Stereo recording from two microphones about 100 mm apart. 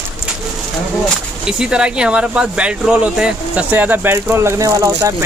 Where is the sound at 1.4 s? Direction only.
10° right (ahead or behind).